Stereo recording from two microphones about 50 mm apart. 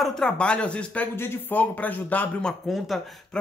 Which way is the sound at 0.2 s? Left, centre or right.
Centre.